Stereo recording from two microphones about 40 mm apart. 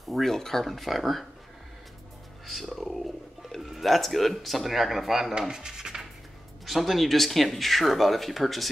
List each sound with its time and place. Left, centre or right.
0.2 s speech: centre
2.4 s speech: centre
5.5 s a sound: centre
6.6 s speech: centre